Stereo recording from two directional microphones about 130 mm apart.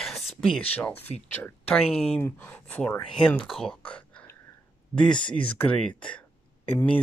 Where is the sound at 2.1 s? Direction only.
15° left (ahead or behind).